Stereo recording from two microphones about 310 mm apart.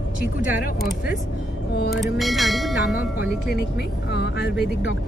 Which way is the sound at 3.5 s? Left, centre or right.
Left.